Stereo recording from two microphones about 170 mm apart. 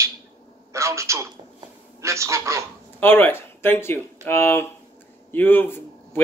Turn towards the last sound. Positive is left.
turn(degrees=10)  # may be behind; listen again after turning